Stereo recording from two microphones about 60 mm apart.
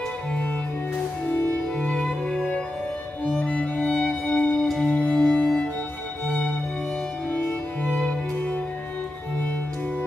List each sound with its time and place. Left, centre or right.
1.8 s music: centre
3.8 s music: centre
7.2 s music: left